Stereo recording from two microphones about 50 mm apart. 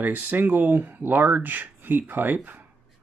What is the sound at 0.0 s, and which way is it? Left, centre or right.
Speech, right.